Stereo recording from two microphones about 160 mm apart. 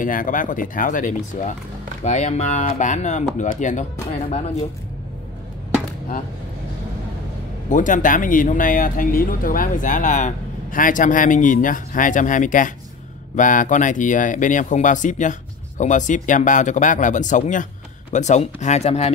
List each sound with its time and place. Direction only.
0.0 s speech: 55° left (ahead or behind)
7.7 s speech: 55° left (ahead or behind)